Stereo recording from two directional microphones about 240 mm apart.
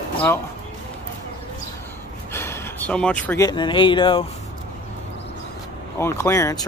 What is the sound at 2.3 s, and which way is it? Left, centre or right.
Speech, centre.